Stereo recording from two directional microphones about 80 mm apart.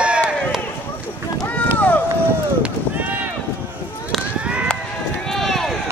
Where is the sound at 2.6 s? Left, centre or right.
Centre.